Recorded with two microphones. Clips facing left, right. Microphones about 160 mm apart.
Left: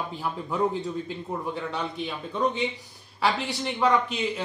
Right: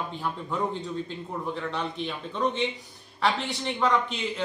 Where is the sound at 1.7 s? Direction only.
5° left (ahead or behind).